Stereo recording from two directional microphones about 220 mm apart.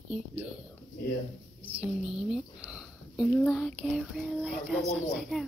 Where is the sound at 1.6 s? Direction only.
25° right (ahead or behind).